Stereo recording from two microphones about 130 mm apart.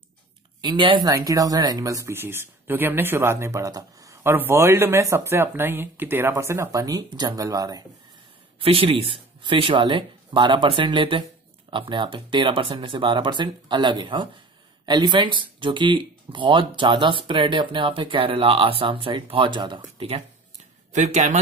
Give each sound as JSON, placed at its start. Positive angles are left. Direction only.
{"t": 0.6, "sound": "speech", "side_deg": -35}
{"t": 8.5, "sound": "speech", "side_deg": -45}
{"t": 20.9, "sound": "speech", "side_deg": -65}